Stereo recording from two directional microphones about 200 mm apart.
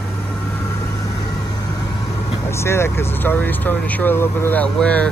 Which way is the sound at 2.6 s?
15° left (ahead or behind).